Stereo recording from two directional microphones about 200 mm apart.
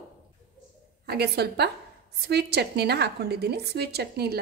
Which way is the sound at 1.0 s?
55° right (ahead or behind).